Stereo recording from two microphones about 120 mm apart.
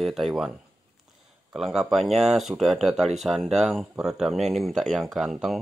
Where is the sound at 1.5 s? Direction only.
5° right (ahead or behind).